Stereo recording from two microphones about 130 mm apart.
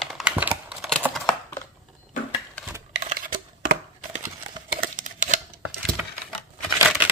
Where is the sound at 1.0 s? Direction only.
10° right (ahead or behind).